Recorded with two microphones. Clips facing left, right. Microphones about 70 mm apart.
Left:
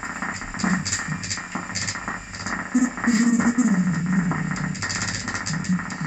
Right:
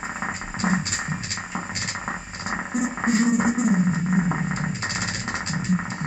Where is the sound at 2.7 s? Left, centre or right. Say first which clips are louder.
Left 3 dB; centre.